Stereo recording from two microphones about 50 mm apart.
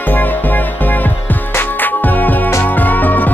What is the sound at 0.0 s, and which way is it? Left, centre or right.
Music, left.